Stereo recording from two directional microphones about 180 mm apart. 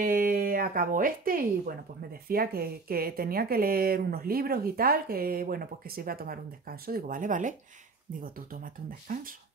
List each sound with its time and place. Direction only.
0.0 s speech: 50° right (ahead or behind)
9.0 s speech: 50° right (ahead or behind)